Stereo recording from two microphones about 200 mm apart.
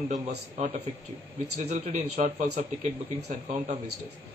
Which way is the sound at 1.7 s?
35° right (ahead or behind).